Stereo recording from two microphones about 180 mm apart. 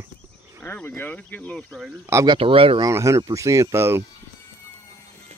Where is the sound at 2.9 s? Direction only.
15° right (ahead or behind).